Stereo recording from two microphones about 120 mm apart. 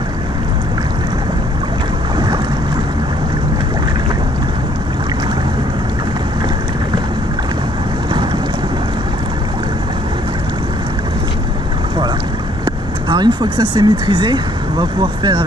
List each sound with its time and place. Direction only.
2.1 s boat: 35° right (ahead or behind)
12.6 s speech: 35° right (ahead or behind)